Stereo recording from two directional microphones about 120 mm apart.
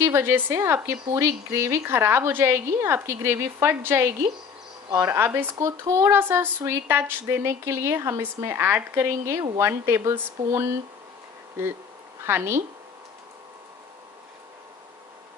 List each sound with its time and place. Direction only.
0.0 s a woman's voice: 20° right (ahead or behind)
12.3 s a woman's voice: 20° right (ahead or behind)